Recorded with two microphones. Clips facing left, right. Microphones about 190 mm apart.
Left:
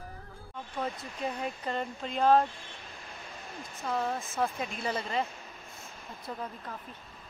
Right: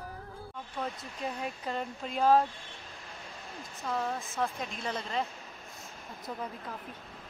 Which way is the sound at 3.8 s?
Centre (ahead or behind).